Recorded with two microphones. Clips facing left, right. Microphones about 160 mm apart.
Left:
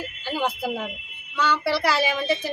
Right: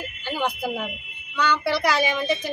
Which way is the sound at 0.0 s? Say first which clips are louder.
Even; centre (ahead or behind).